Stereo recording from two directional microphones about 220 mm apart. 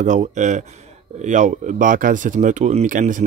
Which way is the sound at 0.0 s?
35° right (ahead or behind).